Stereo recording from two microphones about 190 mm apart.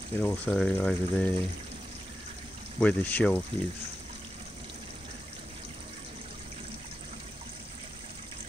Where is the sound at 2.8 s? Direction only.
10° left (ahead or behind).